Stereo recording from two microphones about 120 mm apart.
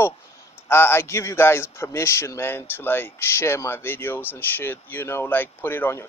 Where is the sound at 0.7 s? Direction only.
20° left (ahead or behind).